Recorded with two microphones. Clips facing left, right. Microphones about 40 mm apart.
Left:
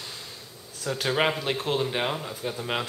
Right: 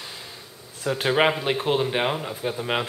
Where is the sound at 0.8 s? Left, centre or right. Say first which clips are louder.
Right 4 dB; centre.